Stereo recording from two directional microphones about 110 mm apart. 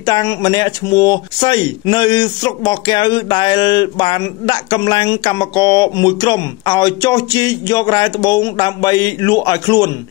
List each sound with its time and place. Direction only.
0.0 s speech: 35° left (ahead or behind)